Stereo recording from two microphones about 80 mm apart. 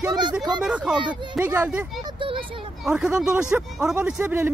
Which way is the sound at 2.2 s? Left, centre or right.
Right.